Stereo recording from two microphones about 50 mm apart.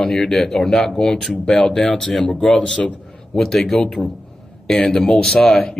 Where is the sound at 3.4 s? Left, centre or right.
Centre.